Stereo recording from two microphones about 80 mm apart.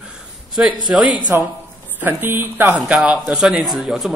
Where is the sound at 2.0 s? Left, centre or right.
Right.